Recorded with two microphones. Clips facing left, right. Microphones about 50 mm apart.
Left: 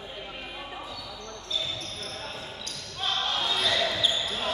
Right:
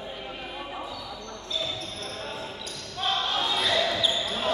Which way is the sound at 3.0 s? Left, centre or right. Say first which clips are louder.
Right 2 dB; centre.